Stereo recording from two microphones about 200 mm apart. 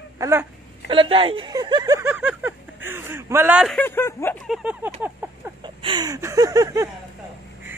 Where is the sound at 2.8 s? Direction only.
10° right (ahead or behind).